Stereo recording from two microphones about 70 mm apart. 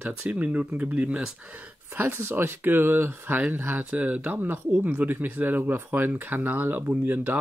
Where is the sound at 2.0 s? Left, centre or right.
Right.